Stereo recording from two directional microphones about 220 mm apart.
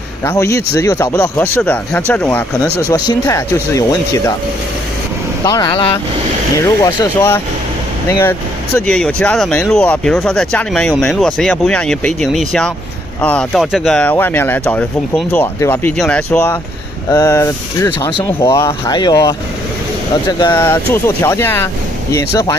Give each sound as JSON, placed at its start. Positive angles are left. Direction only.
{"t": 0.2, "sound": "speech", "side_deg": 10}
{"t": 5.4, "sound": "speech", "side_deg": 20}